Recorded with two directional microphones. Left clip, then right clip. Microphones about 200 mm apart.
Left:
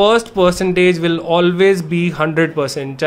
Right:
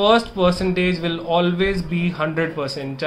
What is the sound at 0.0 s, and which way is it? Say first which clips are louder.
Speech: left 4 dB; 55° left (ahead or behind).